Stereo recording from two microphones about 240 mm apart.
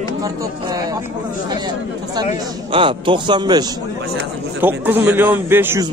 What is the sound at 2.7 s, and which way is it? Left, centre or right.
A man's voice, right.